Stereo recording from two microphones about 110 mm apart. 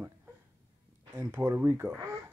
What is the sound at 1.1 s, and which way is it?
Speech, 25° right (ahead or behind).